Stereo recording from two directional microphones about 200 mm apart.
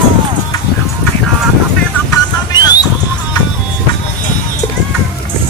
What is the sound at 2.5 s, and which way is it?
Music, 20° left (ahead or behind).